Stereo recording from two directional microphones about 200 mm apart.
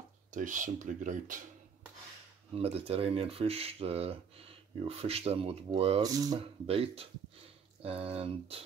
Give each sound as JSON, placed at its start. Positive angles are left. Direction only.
{"t": 0.3, "sound": "speech", "side_deg": -40}
{"t": 2.5, "sound": "speech", "side_deg": -30}